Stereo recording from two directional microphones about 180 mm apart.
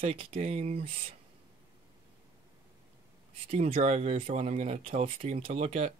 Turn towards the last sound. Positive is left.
turn(degrees=-35)  # may be behind; listen again after turning